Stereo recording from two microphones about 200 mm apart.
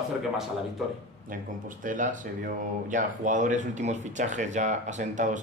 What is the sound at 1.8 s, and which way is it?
Speech, 40° right (ahead or behind).